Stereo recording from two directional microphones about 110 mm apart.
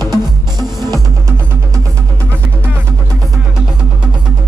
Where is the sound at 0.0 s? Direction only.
35° right (ahead or behind).